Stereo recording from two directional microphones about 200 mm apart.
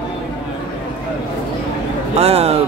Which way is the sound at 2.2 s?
30° right (ahead or behind).